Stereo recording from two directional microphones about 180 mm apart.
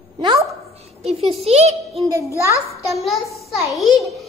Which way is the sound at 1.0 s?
35° right (ahead or behind).